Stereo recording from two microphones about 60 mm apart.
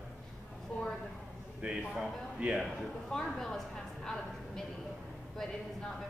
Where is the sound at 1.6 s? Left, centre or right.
Right.